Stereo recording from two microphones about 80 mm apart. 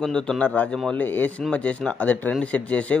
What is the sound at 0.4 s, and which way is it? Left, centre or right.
A man's voice, centre.